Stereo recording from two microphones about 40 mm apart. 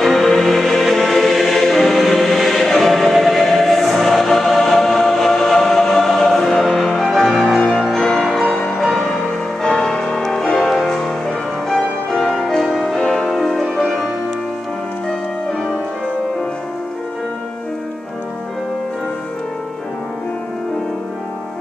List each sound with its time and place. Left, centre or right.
0.0 s choir: centre
7.0 s music: centre
7.2 s music: centre
7.7 s music: centre
8.3 s music: centre
9.6 s music: centre